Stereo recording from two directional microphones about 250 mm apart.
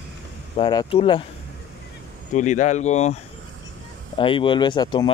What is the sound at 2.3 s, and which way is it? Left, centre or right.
Speech, left.